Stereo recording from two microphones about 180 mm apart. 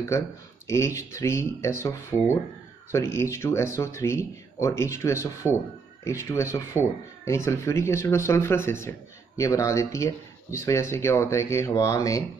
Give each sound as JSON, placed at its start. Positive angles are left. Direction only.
{"t": 0.7, "sound": "speech", "side_deg": 15}